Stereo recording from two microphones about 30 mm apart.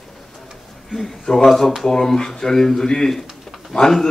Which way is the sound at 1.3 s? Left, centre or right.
Centre.